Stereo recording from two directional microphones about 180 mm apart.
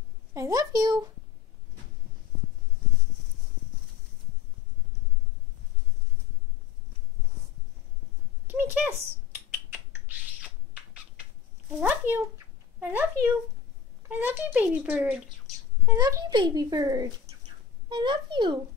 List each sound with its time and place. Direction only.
0.3 s a woman's voice: 20° right (ahead or behind)
8.5 s rodents: 10° right (ahead or behind)
11.8 s a child's voice: 10° right (ahead or behind)
16.0 s speech: 20° right (ahead or behind)